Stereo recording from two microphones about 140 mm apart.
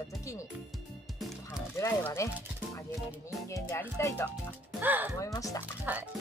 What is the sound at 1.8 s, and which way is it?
Speech, 20° left (ahead or behind).